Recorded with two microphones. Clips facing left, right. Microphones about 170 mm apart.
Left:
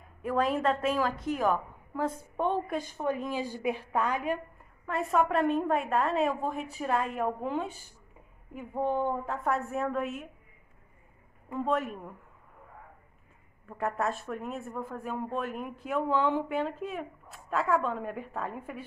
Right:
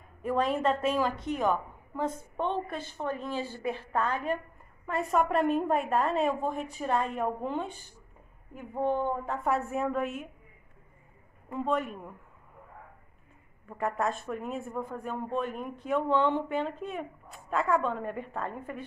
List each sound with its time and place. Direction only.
0.2 s a woman's voice: centre (ahead or behind)
4.8 s speech: centre (ahead or behind)
11.5 s speech: centre (ahead or behind)
13.7 s speech: centre (ahead or behind)